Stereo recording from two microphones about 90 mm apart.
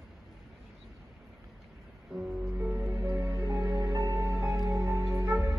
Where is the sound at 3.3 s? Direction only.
35° right (ahead or behind).